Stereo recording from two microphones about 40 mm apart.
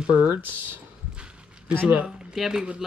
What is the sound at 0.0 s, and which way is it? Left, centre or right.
Speech, right.